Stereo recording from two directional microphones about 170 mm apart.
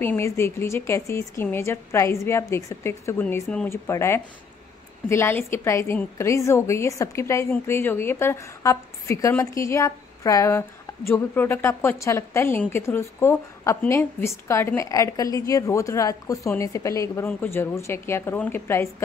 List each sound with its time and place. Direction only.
0.0 s a woman's voice: 15° left (ahead or behind)